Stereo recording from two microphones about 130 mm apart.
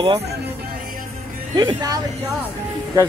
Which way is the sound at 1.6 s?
35° right (ahead or behind).